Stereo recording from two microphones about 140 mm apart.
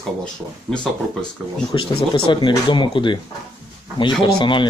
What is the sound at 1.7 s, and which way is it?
Speech, 35° left (ahead or behind).